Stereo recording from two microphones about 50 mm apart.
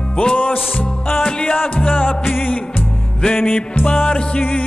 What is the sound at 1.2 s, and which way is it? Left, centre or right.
Music, centre.